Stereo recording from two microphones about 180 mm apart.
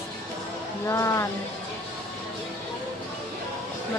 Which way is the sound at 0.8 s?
15° left (ahead or behind).